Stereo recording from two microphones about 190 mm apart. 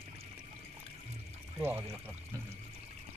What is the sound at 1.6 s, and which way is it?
Speech, 10° right (ahead or behind).